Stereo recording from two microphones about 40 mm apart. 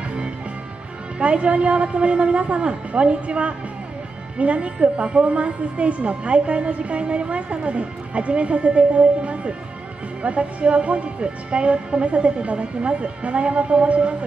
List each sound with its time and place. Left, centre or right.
1.2 s a woman's voice: right